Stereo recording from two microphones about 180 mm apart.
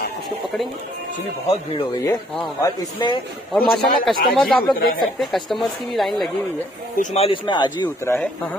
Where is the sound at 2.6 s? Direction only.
25° left (ahead or behind).